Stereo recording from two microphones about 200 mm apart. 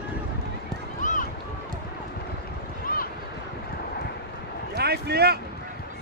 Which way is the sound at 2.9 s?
45° left (ahead or behind).